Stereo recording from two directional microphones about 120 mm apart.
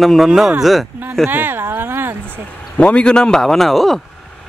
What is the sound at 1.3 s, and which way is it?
Speech, 15° right (ahead or behind).